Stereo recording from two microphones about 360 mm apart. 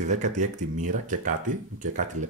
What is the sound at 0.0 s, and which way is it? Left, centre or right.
Speech, centre.